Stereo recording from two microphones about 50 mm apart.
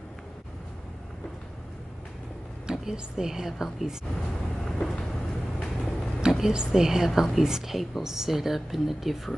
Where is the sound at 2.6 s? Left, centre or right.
Centre.